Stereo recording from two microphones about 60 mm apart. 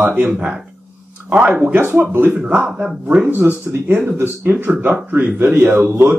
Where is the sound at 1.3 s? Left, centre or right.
Right.